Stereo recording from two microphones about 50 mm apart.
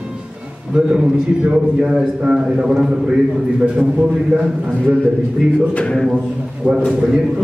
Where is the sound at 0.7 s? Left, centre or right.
Centre.